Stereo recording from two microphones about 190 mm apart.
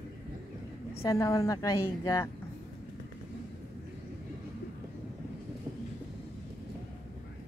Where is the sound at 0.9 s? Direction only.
15° left (ahead or behind).